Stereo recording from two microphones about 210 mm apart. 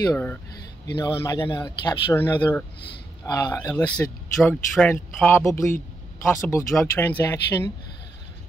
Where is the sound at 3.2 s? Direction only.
20° left (ahead or behind).